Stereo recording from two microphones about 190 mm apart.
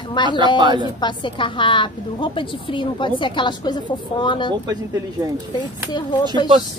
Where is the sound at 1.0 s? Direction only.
25° left (ahead or behind).